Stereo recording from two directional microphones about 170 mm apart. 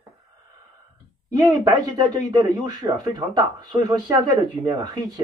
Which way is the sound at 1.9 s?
25° right (ahead or behind).